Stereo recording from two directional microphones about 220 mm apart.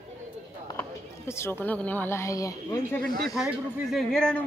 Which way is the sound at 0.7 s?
10° left (ahead or behind).